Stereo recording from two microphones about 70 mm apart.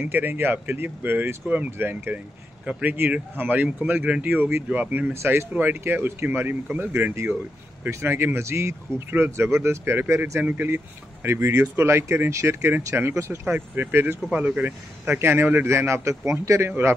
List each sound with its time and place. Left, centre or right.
0.0 s speech: right
5.1 s speech: right
5.5 s speech: right
15.1 s a man's voice: right